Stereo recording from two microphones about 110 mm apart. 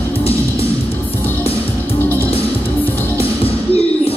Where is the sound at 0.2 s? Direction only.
60° left (ahead or behind).